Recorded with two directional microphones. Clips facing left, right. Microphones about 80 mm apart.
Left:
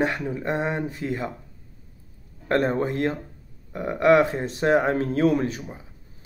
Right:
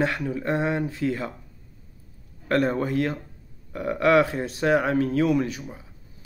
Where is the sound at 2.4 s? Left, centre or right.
Left.